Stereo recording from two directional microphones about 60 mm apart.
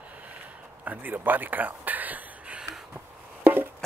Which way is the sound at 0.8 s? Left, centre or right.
Right.